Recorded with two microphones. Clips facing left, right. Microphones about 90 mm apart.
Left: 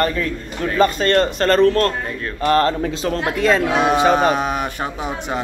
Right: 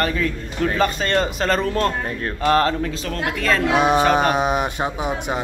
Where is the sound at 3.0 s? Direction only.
25° left (ahead or behind).